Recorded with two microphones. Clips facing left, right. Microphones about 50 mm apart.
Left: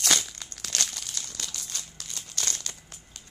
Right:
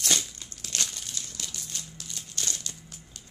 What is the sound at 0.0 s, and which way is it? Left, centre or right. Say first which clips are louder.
Crumpling: left 2 dB; left.